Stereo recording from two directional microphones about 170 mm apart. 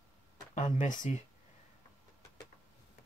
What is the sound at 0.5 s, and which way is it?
Speech, 50° left (ahead or behind).